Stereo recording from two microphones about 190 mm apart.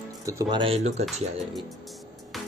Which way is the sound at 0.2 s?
15° right (ahead or behind).